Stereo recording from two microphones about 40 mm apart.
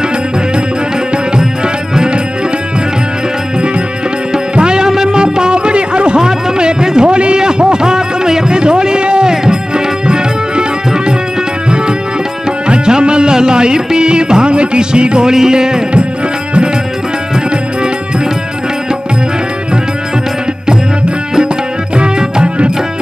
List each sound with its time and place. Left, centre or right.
4.3 s music: right
12.6 s music: right
21.9 s music: right